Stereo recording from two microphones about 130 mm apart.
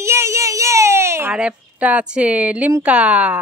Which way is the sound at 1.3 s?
10° right (ahead or behind).